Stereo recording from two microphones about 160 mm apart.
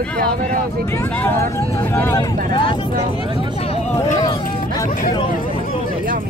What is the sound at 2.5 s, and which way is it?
Speech, 30° left (ahead or behind).